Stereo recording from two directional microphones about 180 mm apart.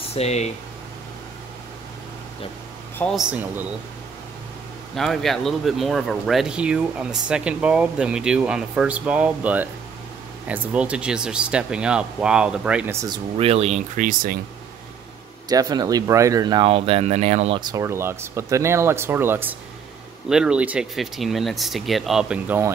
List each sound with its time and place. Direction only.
0.1 s speech: 35° left (ahead or behind)
3.0 s speech: centre (ahead or behind)
4.9 s speech: centre (ahead or behind)
13.0 s speech: 30° right (ahead or behind); by 14.4 s 50° right (ahead or behind)
15.4 s speech: 20° right (ahead or behind); by 17.6 s 40° right (ahead or behind)
17.6 s speech: 20° right (ahead or behind)